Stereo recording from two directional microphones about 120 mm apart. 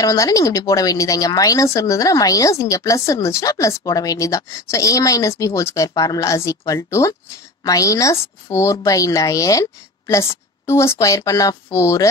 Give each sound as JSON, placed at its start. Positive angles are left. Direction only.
{"t": 0.0, "sound": "speech", "side_deg": 25}